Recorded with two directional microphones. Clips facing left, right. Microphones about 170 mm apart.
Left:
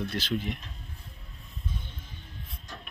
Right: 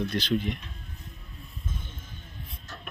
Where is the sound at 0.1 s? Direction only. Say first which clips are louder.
Right 4 dB; 5° left (ahead or behind).